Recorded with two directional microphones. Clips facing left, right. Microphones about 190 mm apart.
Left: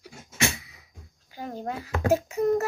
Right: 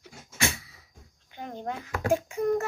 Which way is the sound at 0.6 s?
15° left (ahead or behind).